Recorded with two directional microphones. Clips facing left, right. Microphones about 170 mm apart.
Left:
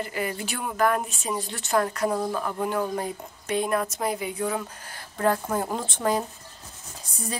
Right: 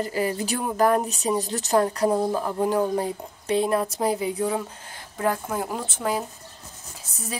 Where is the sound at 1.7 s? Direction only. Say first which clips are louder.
Right 3 dB; 25° right (ahead or behind).